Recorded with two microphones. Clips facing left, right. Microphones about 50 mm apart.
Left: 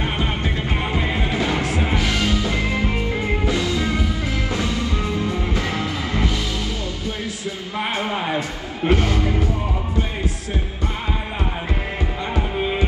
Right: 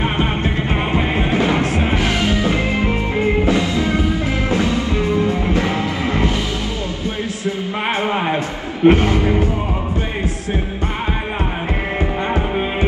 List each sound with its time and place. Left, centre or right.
0.0 s music: right
8.8 s music: right